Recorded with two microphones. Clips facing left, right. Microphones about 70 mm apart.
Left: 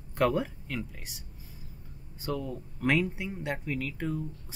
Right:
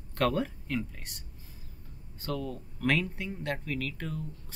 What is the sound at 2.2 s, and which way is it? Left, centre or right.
Speech, centre.